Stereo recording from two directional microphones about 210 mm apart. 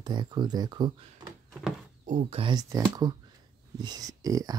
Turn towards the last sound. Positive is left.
turn(degrees=-15)  # may be behind; listen again after turning